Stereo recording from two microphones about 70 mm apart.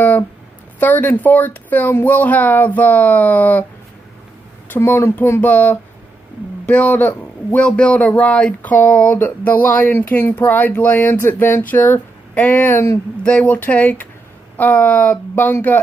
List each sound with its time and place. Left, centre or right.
0.7 s a man's voice: left
4.7 s a child's voice: left
5.4 s a man's voice: left
12.6 s a child's voice: left
13.2 s a man's voice: centre